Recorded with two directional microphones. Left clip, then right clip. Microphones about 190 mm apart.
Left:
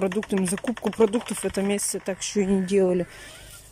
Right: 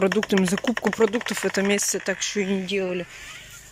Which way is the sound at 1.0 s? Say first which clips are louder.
Left 1 dB; 10° left (ahead or behind).